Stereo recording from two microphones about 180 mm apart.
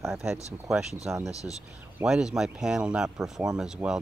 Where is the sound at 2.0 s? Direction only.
5° right (ahead or behind).